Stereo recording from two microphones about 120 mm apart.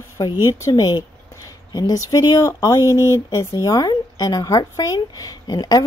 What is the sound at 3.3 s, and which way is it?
Speech, 25° left (ahead or behind).